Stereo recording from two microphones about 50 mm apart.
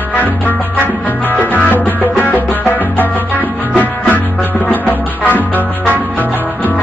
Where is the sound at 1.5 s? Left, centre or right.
Left.